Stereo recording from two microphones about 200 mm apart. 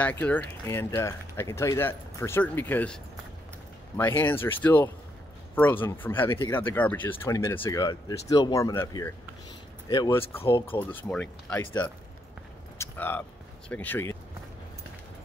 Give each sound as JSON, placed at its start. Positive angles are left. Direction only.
{"t": 0.0, "sound": "speech", "side_deg": 10}
{"t": 10.4, "sound": "speech", "side_deg": 25}
{"t": 10.9, "sound": "speech", "side_deg": 10}